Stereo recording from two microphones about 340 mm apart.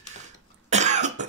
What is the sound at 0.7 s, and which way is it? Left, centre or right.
Cough, right.